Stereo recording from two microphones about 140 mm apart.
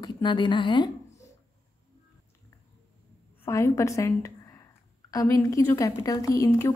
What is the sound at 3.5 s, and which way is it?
A woman's voice, 20° left (ahead or behind).